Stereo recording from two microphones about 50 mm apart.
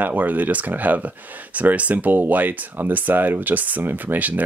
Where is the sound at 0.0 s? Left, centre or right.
Right.